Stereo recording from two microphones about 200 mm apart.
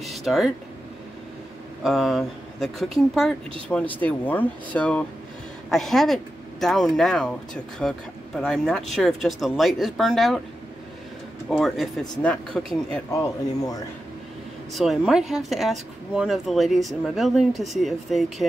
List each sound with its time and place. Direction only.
0.0 s a sound: centre (ahead or behind)
1.8 s speech: centre (ahead or behind)
11.5 s speech: centre (ahead or behind)
12.9 s speech: 15° left (ahead or behind)
14.7 s speech: centre (ahead or behind)